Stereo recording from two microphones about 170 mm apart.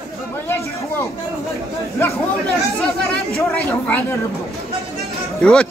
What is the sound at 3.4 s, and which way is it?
Speech, 10° left (ahead or behind).